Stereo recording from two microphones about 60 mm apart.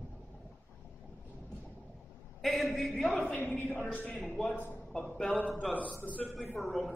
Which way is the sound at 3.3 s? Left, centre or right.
Left.